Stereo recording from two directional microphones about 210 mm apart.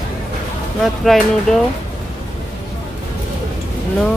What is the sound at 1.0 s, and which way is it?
Speech, centre (ahead or behind).